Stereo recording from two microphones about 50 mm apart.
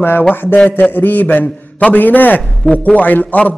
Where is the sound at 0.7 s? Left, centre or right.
Left.